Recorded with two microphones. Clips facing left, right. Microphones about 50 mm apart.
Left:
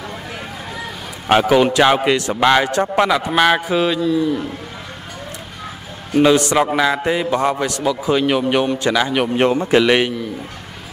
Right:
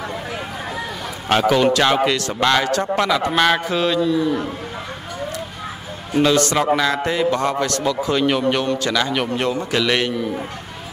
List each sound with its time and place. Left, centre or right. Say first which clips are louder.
1.5 s a man's voice: left 2 dB; centre
6.1 s a man's voice: left 3 dB; centre
9.4 s a man's voice: left 6 dB; left